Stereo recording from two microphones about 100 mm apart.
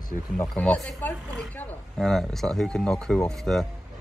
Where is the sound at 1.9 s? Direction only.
5° left (ahead or behind).